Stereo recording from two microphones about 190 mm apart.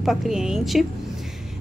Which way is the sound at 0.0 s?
Centre (ahead or behind).